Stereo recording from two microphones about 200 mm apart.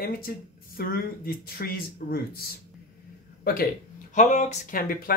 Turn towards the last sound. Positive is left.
turn(degrees=45)  # may be behind; listen again after turning